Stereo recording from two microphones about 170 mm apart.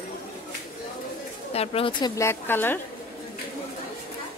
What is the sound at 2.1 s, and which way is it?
Speech, 15° left (ahead or behind).